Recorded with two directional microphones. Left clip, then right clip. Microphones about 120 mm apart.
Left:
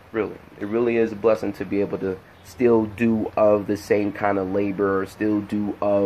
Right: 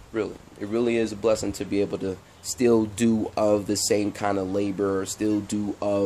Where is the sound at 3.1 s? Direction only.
40° right (ahead or behind).